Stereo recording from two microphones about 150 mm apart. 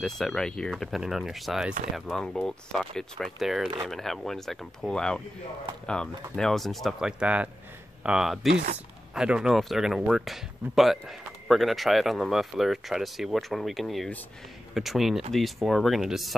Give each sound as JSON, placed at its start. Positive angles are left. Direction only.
{"t": 0.0, "sound": "speech", "side_deg": 5}
{"t": 6.3, "sound": "speech", "side_deg": 5}